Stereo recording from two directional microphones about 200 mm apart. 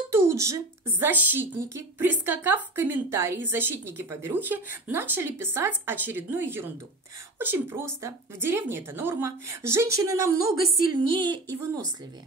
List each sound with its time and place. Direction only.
0.1 s speech: 15° right (ahead or behind)